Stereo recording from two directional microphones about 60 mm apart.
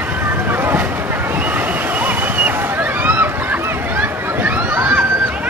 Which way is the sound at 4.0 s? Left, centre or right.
Right.